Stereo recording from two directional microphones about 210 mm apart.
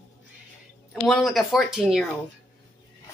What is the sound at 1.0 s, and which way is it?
A woman's voice, centre (ahead or behind).